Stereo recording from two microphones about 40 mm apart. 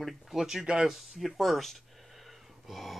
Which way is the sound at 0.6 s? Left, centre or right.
Right.